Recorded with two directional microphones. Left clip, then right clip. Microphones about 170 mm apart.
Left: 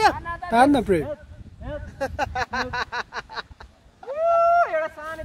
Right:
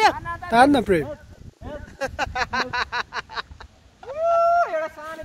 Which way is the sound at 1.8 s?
45° left (ahead or behind).